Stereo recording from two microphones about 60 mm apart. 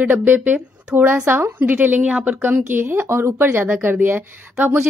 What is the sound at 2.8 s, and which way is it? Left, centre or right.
A woman's voice, right.